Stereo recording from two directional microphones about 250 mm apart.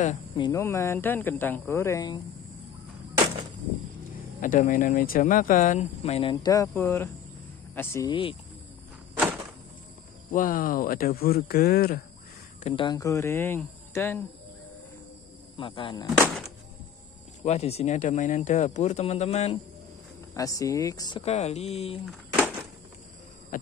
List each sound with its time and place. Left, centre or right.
0.0 s speech: left
0.5 s speech: centre
4.4 s speech: left
9.1 s a sound: centre
10.3 s speech: left
12.6 s speech: centre
15.5 s speech: left
16.2 s a sound: centre
17.4 s speech: left
20.3 s speech: centre
22.0 s a sound: centre
23.5 s speech: left